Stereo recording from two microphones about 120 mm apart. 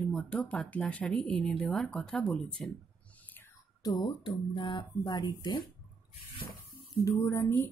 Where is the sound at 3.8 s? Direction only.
35° left (ahead or behind).